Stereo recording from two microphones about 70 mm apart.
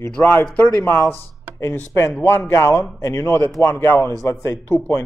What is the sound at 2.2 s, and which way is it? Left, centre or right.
Speech, left.